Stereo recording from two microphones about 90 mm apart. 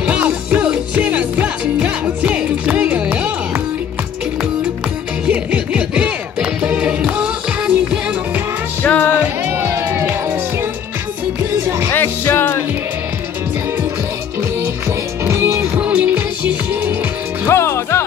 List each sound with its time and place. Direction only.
0.0 s music: 15° right (ahead or behind)
5.3 s music: 15° right (ahead or behind)
8.8 s music: 15° left (ahead or behind)
9.4 s music: 25° right (ahead or behind)
11.9 s music: 25° left (ahead or behind)
15.2 s music: 30° right (ahead or behind)
15.8 s music: 15° right (ahead or behind)
17.5 s music: 30° left (ahead or behind)